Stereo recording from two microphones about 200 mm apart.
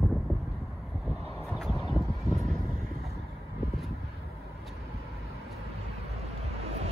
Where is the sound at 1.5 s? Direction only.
Centre (ahead or behind).